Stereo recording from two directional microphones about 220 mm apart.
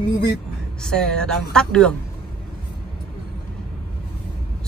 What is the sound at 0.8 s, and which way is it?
Speech, 5° left (ahead or behind).